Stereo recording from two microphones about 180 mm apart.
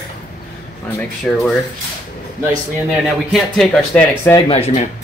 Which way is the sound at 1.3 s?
5° left (ahead or behind).